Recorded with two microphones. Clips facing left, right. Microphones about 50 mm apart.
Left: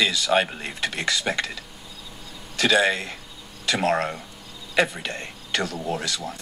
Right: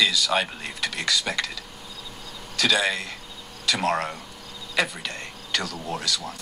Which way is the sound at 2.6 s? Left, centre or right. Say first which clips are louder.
Left 3 dB; left.